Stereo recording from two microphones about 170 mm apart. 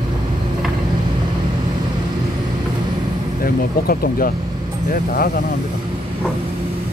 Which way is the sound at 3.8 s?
60° left (ahead or behind).